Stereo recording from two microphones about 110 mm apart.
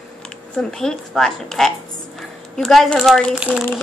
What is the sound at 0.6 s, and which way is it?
A child's voice, 5° left (ahead or behind).